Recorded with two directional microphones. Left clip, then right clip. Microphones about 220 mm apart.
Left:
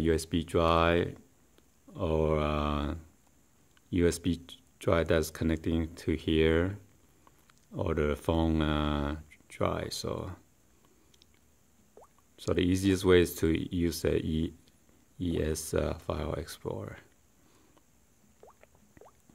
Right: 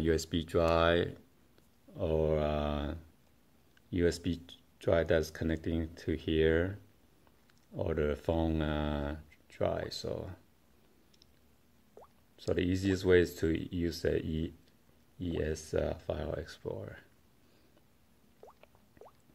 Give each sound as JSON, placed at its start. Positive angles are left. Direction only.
{"t": 0.0, "sound": "speech", "side_deg": 15}
{"t": 12.0, "sound": "a sound", "side_deg": -5}
{"t": 12.4, "sound": "speech", "side_deg": 20}
{"t": 18.4, "sound": "boiling", "side_deg": -5}
{"t": 19.0, "sound": "liquid", "side_deg": 25}